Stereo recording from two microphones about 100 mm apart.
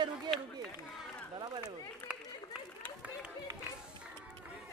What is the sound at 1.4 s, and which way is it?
Speech, 45° right (ahead or behind).